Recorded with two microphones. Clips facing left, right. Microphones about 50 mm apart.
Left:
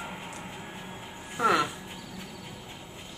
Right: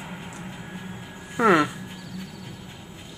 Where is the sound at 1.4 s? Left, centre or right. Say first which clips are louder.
Right 6 dB; right.